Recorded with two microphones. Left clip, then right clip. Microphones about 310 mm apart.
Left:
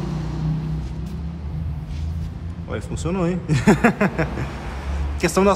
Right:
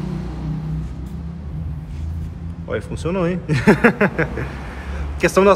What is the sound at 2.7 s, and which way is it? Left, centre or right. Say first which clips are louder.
A man's voice: right 4 dB; centre.